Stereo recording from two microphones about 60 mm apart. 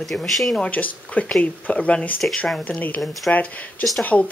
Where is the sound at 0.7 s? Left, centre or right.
Left.